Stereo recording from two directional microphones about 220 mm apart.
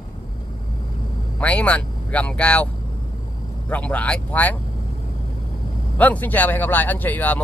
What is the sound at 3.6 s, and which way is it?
Speech, 5° left (ahead or behind).